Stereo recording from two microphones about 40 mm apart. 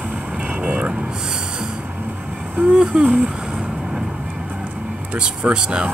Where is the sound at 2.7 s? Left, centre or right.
Right.